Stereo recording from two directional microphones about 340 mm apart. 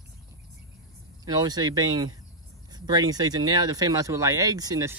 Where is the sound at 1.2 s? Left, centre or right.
Centre.